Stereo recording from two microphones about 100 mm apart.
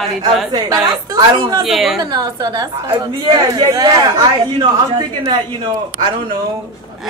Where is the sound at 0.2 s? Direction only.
45° right (ahead or behind).